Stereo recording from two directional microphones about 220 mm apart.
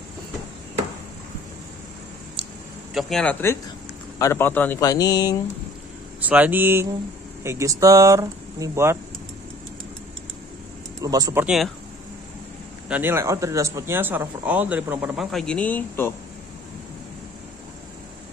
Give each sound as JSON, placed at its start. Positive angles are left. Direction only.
{"t": 2.4, "sound": "a sound", "side_deg": -25}
{"t": 2.9, "sound": "speech", "side_deg": 0}
{"t": 6.2, "sound": "speech", "side_deg": -5}
{"t": 11.0, "sound": "speech", "side_deg": -15}
{"t": 11.4, "sound": "speech", "side_deg": 0}
{"t": 12.8, "sound": "speech", "side_deg": -10}